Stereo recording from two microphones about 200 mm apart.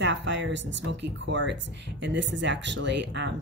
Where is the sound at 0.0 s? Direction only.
65° right (ahead or behind).